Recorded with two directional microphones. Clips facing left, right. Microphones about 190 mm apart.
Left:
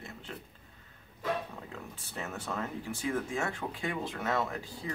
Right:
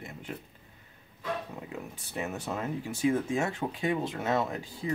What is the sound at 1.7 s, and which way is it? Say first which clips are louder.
Speech: right 5 dB; 15° right (ahead or behind).